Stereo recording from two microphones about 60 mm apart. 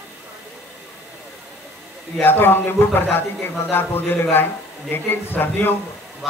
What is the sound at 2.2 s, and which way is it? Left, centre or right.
A man's voice, left.